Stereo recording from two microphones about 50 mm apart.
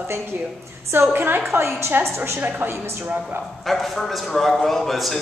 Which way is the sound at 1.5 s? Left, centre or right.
Right.